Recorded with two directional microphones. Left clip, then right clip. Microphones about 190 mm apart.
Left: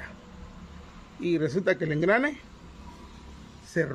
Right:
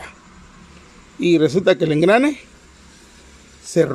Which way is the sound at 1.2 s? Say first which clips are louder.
Right 11 dB; 10° right (ahead or behind).